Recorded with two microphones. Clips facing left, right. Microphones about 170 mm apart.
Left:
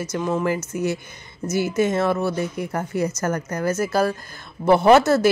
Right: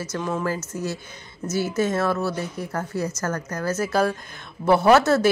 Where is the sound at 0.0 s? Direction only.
15° left (ahead or behind).